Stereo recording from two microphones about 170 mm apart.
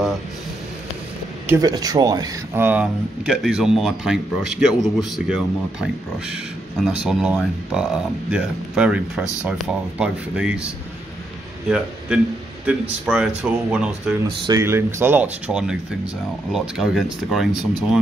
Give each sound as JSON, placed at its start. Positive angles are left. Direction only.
{"t": 1.5, "sound": "speech", "side_deg": -20}
{"t": 9.2, "sound": "speech", "side_deg": 20}
{"t": 9.5, "sound": "speech", "side_deg": -5}
{"t": 12.6, "sound": "speech", "side_deg": -10}
{"t": 14.4, "sound": "speech", "side_deg": -20}